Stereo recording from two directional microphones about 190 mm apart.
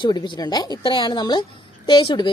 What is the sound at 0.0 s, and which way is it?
A woman's voice, 25° left (ahead or behind).